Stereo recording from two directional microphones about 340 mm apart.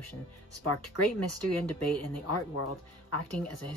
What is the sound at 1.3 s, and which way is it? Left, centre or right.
A woman's voice, left.